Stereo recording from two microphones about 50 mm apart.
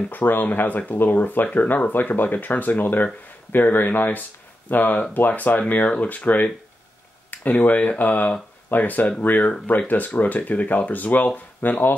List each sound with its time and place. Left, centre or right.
0.1 s speech: left